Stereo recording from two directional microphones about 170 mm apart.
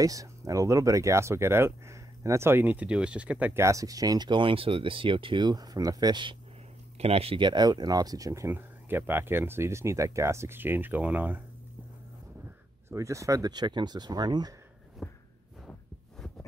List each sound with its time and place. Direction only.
0.0 s speech: 20° right (ahead or behind)
12.9 s speech: 20° right (ahead or behind)
15.0 s a sound: centre (ahead or behind)